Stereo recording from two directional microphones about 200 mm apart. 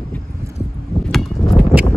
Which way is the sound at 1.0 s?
Centre (ahead or behind).